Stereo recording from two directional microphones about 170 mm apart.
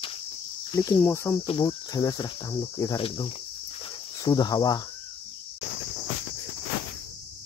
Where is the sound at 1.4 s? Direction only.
25° left (ahead or behind).